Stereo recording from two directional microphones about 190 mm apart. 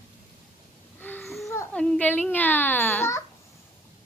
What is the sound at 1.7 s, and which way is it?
A child's voice, 5° left (ahead or behind).